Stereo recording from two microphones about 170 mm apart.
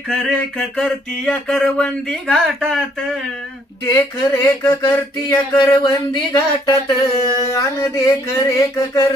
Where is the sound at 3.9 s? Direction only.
15° left (ahead or behind).